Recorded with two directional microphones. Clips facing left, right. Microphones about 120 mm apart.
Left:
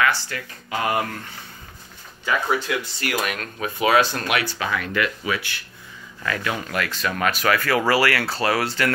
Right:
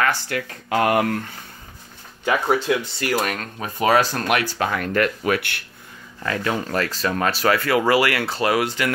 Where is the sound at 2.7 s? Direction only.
25° right (ahead or behind).